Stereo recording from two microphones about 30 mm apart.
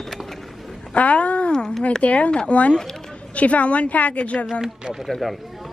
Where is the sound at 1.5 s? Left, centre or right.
Left.